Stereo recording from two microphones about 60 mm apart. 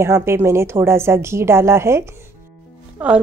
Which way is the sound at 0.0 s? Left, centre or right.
Right.